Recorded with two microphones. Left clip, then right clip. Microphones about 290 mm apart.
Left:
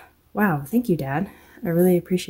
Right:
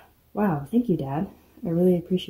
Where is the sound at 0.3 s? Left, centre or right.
Left.